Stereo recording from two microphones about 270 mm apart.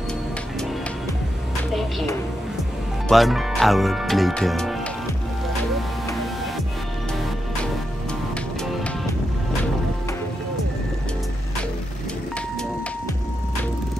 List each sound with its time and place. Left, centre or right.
3.1 s speech: centre